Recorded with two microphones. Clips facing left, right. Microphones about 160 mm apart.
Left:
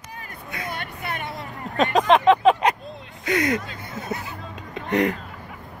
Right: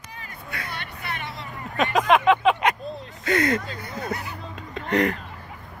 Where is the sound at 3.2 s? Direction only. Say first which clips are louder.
Even; 15° left (ahead or behind).